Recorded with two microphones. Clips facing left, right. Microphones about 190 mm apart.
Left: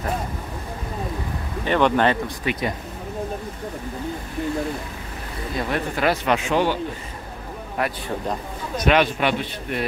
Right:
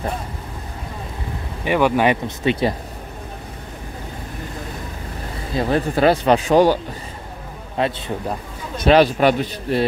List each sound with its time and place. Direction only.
1.6 s speech: 10° right (ahead or behind)
2.2 s speech: 25° right (ahead or behind)
5.6 s a man's voice: 30° right (ahead or behind)
7.8 s speech: 25° right (ahead or behind)
8.8 s a man's voice: 35° right (ahead or behind)